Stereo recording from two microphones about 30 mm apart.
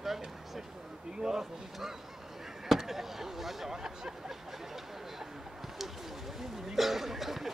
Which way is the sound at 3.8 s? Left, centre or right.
Right.